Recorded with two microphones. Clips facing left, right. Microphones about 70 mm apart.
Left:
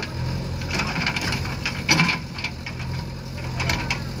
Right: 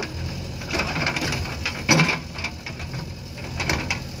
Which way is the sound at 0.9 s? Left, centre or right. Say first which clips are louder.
Right 1 dB; centre.